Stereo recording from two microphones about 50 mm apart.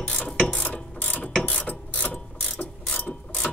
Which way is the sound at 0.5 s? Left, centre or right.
Left.